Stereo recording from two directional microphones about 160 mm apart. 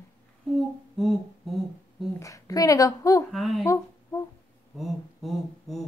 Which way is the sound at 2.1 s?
20° left (ahead or behind).